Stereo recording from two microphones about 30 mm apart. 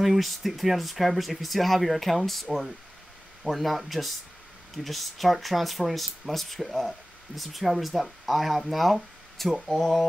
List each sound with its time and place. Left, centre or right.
0.0 s speech: centre
3.4 s speech: centre